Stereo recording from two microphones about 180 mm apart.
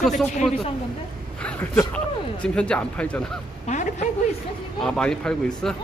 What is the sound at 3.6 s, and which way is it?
Speech, 40° left (ahead or behind).